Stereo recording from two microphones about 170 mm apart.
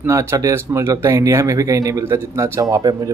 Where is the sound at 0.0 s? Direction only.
15° right (ahead or behind).